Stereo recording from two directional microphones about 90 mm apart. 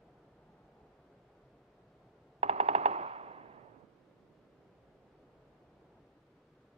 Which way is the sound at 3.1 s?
90° right.